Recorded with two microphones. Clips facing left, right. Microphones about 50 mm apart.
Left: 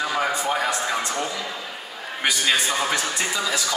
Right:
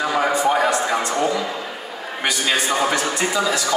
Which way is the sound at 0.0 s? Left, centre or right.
Centre.